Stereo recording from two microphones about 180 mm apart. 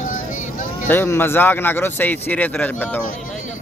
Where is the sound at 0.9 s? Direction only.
10° left (ahead or behind).